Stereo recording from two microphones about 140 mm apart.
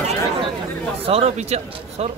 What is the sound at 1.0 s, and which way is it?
Speech, 45° right (ahead or behind).